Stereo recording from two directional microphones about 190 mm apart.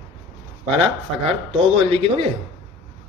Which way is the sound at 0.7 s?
30° right (ahead or behind).